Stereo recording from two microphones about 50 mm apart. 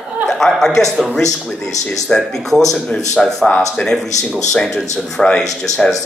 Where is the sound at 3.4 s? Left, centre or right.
Centre.